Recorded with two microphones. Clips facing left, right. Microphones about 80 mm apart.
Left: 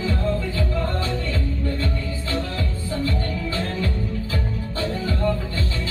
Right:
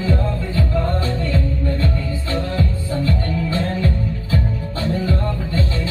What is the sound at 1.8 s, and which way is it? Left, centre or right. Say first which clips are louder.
Music: right 4 dB; right.